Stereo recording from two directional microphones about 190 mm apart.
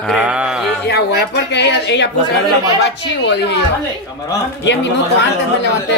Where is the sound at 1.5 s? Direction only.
65° left (ahead or behind).